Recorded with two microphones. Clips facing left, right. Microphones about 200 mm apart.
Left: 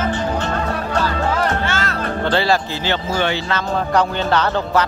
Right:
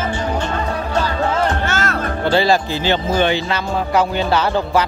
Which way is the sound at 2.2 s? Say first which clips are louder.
Right 3 dB; 15° right (ahead or behind).